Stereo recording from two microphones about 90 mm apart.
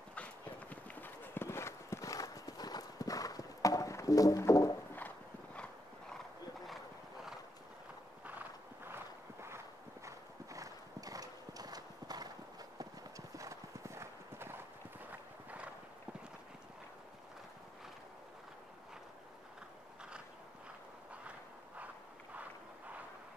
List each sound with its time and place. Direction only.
0.1 s clip-clop: 15° left (ahead or behind); by 4.7 s 35° left (ahead or behind)
4.9 s horse: 15° left (ahead or behind)
8.8 s walk: 25° right (ahead or behind)
10.0 s clip-clop: 40° right (ahead or behind)
13.4 s clip-clop: 35° right (ahead or behind)
15.0 s clip-clop: 15° right (ahead or behind)
22.3 s walk: 15° right (ahead or behind)